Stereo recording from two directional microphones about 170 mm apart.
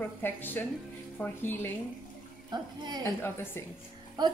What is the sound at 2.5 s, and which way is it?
Speech, 25° right (ahead or behind).